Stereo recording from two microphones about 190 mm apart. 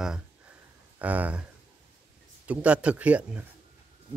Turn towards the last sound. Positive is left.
turn(degrees=-5)  # may be behind; listen again after turning